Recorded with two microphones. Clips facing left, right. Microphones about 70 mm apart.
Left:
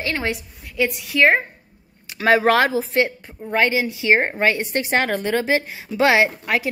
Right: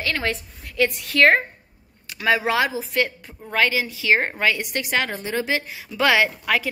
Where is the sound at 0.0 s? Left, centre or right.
Centre.